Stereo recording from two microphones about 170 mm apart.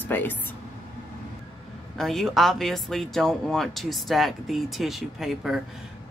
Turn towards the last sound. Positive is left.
turn(degrees=0)  # may be behind; listen again after turning